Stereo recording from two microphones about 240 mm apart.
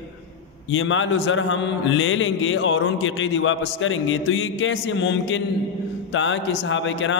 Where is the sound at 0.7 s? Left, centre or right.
Left.